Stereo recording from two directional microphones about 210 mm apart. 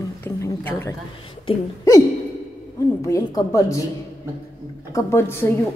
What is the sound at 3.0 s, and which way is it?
Speech, 15° left (ahead or behind).